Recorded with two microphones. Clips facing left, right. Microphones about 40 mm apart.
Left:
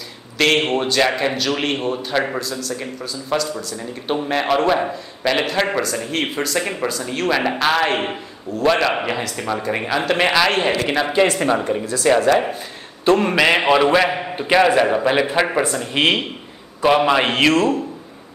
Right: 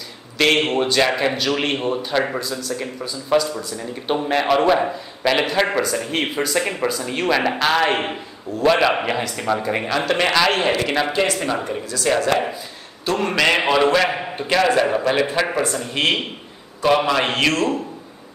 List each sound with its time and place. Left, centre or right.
0.4 s a man's voice: centre
11.3 s speech: centre
11.8 s speech: left
13.2 s a man's voice: centre